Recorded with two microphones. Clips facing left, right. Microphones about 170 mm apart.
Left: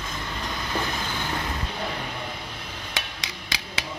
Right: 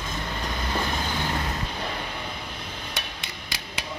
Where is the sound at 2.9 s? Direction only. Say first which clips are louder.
Left 1 dB; 90° left.